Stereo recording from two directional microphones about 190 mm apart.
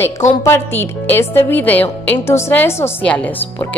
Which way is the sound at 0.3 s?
15° left (ahead or behind).